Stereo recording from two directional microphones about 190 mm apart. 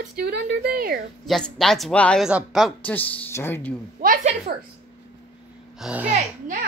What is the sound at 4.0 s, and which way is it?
Speech, 40° right (ahead or behind).